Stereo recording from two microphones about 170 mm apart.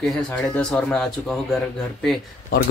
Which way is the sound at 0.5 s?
5° left (ahead or behind).